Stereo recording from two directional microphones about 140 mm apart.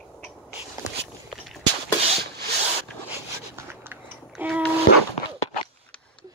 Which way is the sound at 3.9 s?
10° right (ahead or behind).